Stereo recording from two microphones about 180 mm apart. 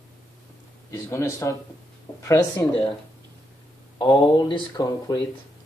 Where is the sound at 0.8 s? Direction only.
15° left (ahead or behind).